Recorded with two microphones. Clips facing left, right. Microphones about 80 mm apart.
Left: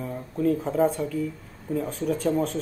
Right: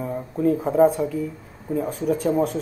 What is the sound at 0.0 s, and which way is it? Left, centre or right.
Speech, centre.